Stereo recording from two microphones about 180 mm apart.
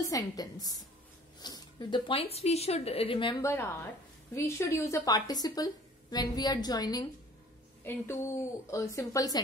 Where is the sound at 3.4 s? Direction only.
15° left (ahead or behind).